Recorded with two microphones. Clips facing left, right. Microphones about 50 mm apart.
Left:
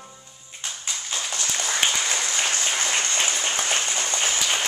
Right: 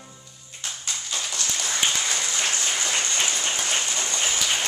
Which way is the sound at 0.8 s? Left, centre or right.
Centre.